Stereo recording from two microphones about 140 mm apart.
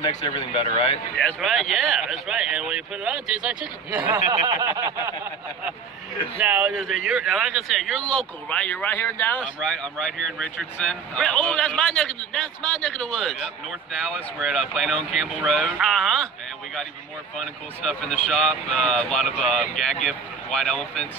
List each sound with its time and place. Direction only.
0.3 s speech: 40° left (ahead or behind)
1.1 s speech: centre (ahead or behind)
4.3 s a sound: 25° right (ahead or behind)
6.3 s speech: 10° right (ahead or behind)
6.7 s speech: centre (ahead or behind)
17.4 s speech: 5° left (ahead or behind)